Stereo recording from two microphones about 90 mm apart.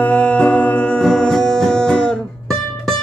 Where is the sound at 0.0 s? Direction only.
15° left (ahead or behind).